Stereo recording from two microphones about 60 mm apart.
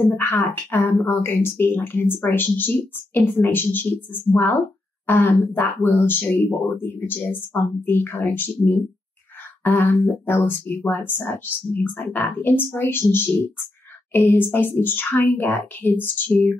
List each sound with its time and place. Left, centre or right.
0.0 s a woman's voice: left